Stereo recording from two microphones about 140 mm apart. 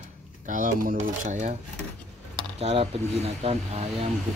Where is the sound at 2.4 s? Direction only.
45° right (ahead or behind).